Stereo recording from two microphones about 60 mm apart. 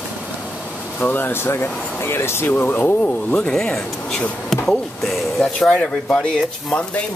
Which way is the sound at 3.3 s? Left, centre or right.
Centre.